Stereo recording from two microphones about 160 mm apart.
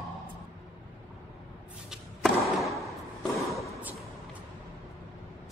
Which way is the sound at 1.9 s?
Centre (ahead or behind).